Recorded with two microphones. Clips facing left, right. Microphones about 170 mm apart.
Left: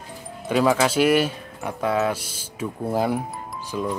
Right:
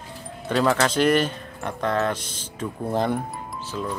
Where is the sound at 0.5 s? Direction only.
5° left (ahead or behind).